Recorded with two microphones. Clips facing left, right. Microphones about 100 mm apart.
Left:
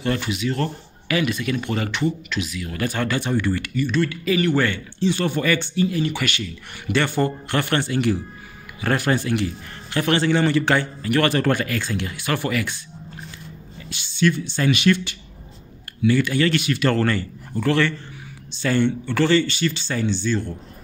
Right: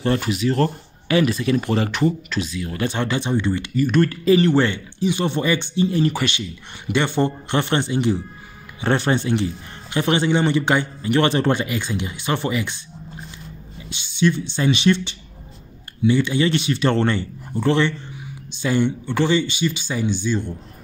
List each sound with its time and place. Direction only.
0.0 s speech: 35° right (ahead or behind); by 3.7 s 20° right (ahead or behind)
3.7 s speech: 45° right (ahead or behind)
4.2 s a man's voice: 30° right (ahead or behind)
6.2 s a man's voice: 20° right (ahead or behind)
13.8 s a man's voice: 20° right (ahead or behind)